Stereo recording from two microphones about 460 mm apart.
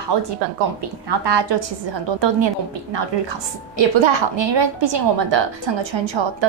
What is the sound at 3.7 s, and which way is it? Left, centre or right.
A woman's voice, right.